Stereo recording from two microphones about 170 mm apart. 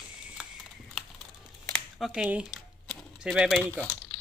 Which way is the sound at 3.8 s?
10° left (ahead or behind).